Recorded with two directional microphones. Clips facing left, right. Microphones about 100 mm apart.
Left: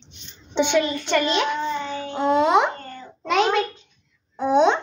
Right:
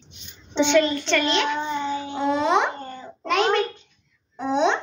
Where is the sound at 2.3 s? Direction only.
10° left (ahead or behind).